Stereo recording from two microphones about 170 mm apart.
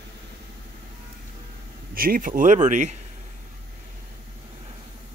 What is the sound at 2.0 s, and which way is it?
Speech, 55° right (ahead or behind).